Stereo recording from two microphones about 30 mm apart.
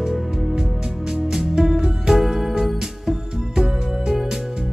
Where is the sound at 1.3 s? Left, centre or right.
Centre.